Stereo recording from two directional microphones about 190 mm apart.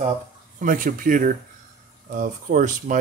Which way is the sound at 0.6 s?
45° right (ahead or behind).